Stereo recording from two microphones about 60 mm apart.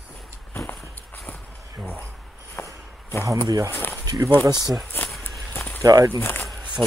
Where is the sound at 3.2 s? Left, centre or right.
Right.